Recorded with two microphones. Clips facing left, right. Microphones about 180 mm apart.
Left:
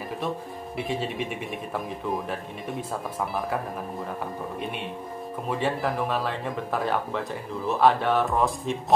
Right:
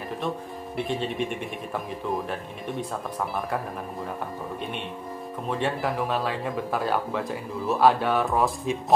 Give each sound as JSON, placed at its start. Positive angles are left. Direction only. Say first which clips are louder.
{"t": 0.7, "sound": "speech", "louder": "right 2 dB", "side_deg": 0}
{"t": 5.5, "sound": "speech", "louder": "even", "side_deg": 0}